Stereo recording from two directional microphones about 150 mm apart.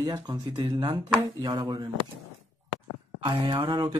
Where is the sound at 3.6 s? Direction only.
30° right (ahead or behind).